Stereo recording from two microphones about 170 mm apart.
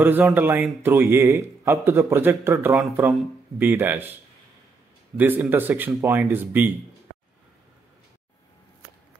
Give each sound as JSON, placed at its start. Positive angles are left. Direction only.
{"t": 0.0, "sound": "speech", "side_deg": -10}